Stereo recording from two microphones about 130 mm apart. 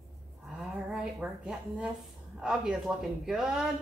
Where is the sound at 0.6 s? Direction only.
5° right (ahead or behind).